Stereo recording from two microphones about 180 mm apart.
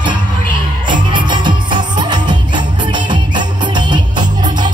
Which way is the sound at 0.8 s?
25° right (ahead or behind).